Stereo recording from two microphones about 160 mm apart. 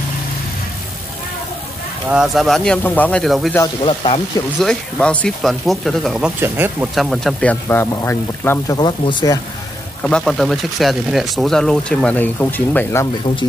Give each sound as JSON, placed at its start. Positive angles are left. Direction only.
{"t": 2.0, "sound": "speech", "side_deg": -5}
{"t": 3.8, "sound": "speech", "side_deg": 35}
{"t": 4.6, "sound": "speech", "side_deg": 5}
{"t": 6.4, "sound": "speech", "side_deg": -15}
{"t": 7.0, "sound": "speech", "side_deg": 0}
{"t": 7.6, "sound": "speech", "side_deg": 15}
{"t": 10.0, "sound": "speech", "side_deg": 5}